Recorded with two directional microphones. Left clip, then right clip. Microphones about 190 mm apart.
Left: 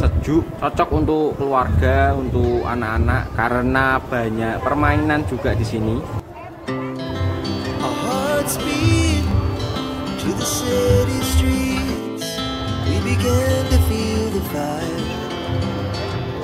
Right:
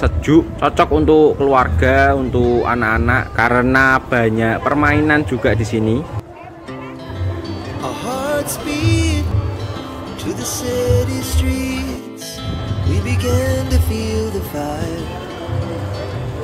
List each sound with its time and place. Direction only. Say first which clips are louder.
0.0 s a man's voice: right 6 dB; 20° right (ahead or behind)
7.8 s music: even; centre (ahead or behind)
10.2 s music: even; centre (ahead or behind)
12.9 s music: right 1 dB; centre (ahead or behind)